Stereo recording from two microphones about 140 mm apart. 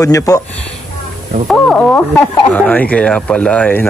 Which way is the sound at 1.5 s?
5° left (ahead or behind).